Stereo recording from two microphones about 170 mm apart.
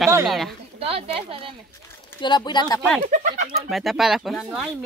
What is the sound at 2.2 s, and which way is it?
Speech, 25° left (ahead or behind).